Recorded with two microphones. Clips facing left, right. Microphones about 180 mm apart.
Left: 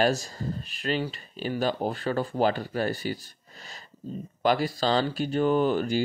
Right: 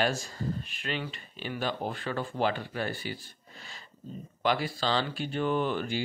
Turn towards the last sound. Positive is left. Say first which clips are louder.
# left 6 dB
turn(degrees=40)  # may be behind; listen again after turning